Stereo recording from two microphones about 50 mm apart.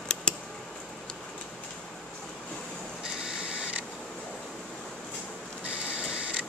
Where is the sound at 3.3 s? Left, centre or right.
Centre.